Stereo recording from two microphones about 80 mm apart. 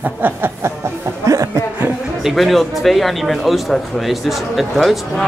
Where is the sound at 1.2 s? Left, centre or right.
Right.